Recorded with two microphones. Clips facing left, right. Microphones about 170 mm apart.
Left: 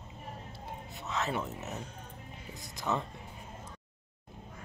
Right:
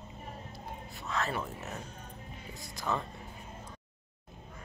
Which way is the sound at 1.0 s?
20° left (ahead or behind).